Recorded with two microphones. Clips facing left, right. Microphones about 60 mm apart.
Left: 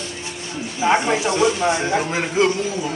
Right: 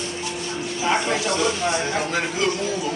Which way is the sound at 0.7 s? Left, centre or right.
Left.